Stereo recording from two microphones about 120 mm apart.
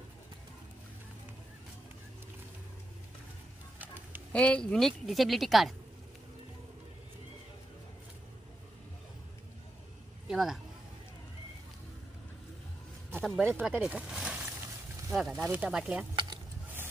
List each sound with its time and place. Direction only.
3.8 s bird: 15° right (ahead or behind)
4.3 s a woman's voice: 10° left (ahead or behind)
10.2 s a sound: 5° right (ahead or behind)
13.2 s a woman's voice: 5° left (ahead or behind)
13.5 s speech: 15° right (ahead or behind)
13.7 s a sound: 5° right (ahead or behind)
15.1 s a woman's voice: centre (ahead or behind)
15.4 s speech: 15° right (ahead or behind)